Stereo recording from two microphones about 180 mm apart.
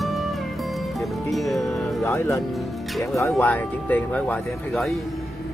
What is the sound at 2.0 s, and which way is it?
Speech, 15° left (ahead or behind).